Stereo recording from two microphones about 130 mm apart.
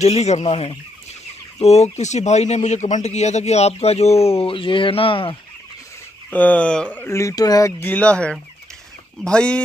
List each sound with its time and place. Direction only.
0.0 s speech: 55° left (ahead or behind)
6.3 s speech: 10° left (ahead or behind); by 7.7 s 30° left (ahead or behind)
7.8 s speech: 10° left (ahead or behind)